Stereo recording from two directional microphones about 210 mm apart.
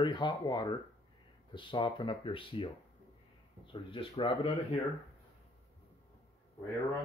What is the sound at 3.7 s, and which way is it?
Speech, 25° left (ahead or behind).